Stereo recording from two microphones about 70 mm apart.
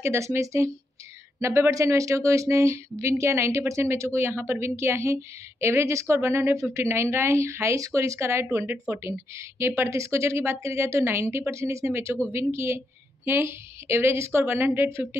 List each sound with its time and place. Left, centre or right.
0.0 s speech: right